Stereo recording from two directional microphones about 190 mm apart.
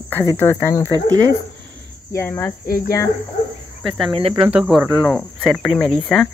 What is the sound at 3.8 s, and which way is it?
Speech, centre (ahead or behind).